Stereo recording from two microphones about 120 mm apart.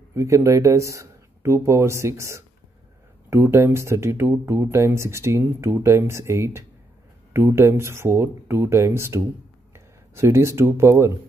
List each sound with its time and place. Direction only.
0.1 s speech: 25° right (ahead or behind)